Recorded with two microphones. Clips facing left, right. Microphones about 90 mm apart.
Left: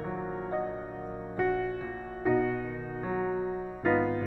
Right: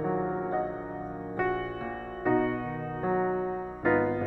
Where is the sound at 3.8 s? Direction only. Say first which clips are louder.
Right 1 dB; 15° right (ahead or behind).